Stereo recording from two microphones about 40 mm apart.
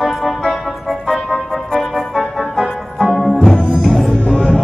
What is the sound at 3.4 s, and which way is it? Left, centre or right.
Music, centre.